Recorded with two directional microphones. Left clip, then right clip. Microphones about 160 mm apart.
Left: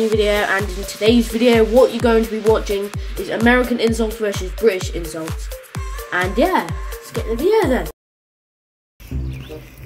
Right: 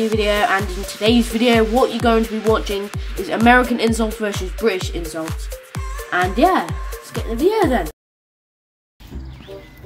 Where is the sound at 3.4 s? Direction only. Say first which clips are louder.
Right 2 dB; 25° right (ahead or behind).